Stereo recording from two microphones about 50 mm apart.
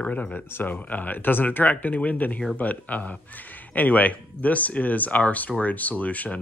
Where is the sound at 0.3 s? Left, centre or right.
Left.